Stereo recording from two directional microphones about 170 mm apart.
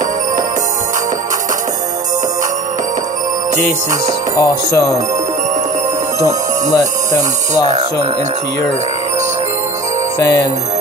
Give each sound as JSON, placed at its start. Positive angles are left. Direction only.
{"t": 4.4, "sound": "music", "side_deg": 20}
{"t": 10.1, "sound": "music", "side_deg": 20}